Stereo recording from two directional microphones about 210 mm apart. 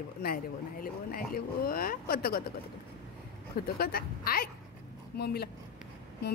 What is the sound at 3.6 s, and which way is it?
A woman's voice, 45° left (ahead or behind).